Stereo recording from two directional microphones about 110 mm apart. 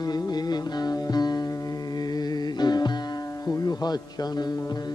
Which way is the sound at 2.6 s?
40° left (ahead or behind).